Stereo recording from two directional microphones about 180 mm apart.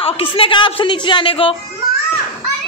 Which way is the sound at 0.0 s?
30° left (ahead or behind).